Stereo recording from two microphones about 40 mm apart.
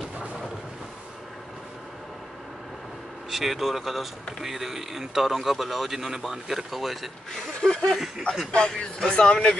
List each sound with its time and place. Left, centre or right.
3.3 s speech: centre
7.6 s speech: centre